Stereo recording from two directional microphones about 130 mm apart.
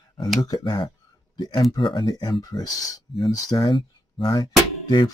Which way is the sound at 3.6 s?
40° left (ahead or behind).